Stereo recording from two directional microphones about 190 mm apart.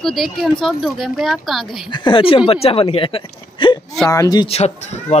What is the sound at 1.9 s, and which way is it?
Speech, 25° left (ahead or behind).